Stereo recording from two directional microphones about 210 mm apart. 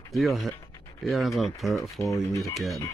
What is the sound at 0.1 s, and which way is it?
Speech, centre (ahead or behind).